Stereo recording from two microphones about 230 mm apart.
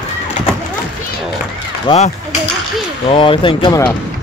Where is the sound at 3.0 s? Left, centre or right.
Left.